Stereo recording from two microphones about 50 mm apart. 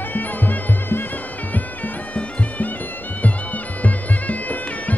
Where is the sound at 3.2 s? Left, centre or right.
Left.